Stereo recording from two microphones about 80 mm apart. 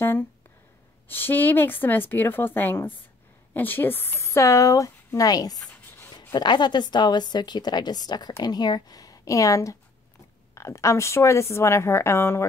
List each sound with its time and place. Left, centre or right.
1.0 s a woman's voice: left
6.3 s a woman's voice: left